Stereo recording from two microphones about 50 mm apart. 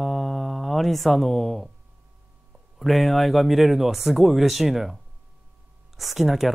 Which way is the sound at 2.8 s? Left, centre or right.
Centre.